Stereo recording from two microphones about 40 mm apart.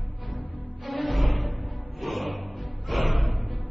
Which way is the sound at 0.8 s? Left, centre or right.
Centre.